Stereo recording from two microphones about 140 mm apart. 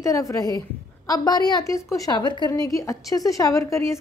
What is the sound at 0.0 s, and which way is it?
A woman's voice, 25° left (ahead or behind).